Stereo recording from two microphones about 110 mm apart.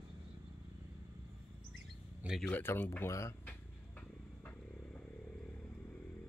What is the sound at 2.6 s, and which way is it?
Speech, 20° left (ahead or behind).